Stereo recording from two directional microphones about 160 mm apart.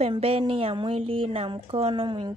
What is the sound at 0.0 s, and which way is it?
Speech, 35° right (ahead or behind).